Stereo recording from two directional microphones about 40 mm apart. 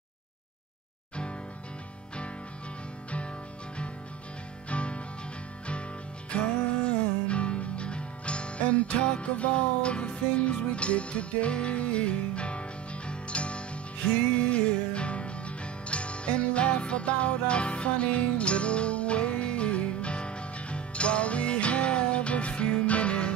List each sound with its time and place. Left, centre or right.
4.6 s music: left
7.2 s music: left